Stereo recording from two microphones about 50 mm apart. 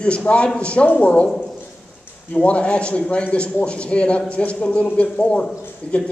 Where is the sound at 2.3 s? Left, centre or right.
Left.